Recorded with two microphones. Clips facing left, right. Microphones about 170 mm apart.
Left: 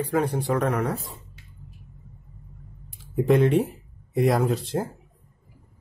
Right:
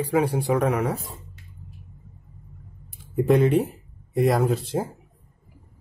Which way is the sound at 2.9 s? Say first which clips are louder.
Right 1 dB; centre (ahead or behind).